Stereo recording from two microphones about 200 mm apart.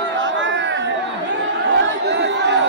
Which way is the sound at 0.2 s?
70° right (ahead or behind).